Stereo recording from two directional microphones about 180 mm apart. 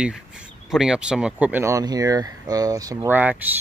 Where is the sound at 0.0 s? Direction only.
5° right (ahead or behind).